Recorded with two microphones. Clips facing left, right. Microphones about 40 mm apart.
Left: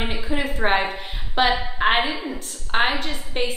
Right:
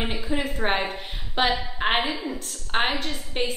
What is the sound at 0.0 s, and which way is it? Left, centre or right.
A woman's voice, centre.